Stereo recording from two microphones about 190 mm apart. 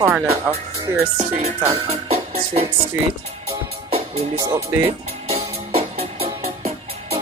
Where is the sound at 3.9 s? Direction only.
35° right (ahead or behind).